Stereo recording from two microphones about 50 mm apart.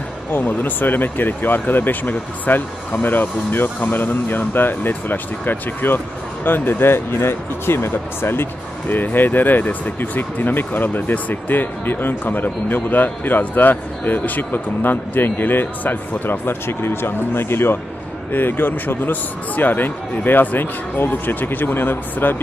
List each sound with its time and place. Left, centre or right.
0.3 s a man's voice: left
8.8 s a man's voice: left